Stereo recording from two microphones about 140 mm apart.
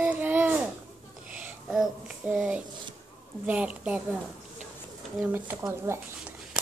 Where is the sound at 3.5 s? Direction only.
10° right (ahead or behind).